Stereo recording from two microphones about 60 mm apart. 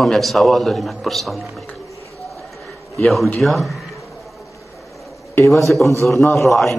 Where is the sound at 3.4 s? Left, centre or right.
Centre.